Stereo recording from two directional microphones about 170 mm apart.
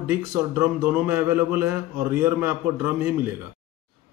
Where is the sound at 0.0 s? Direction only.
15° right (ahead or behind).